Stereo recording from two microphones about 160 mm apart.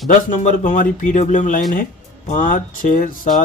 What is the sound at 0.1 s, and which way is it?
Speech, 50° left (ahead or behind).